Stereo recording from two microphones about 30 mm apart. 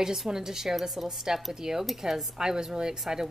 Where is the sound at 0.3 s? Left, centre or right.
Centre.